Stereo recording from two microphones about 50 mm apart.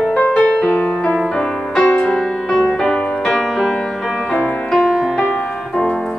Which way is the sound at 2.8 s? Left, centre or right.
Centre.